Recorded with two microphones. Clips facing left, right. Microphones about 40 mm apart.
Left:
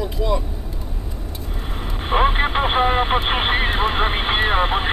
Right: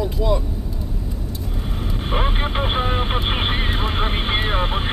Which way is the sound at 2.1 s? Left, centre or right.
Centre.